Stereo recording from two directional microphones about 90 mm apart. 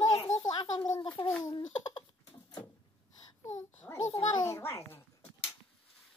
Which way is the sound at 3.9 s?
15° left (ahead or behind).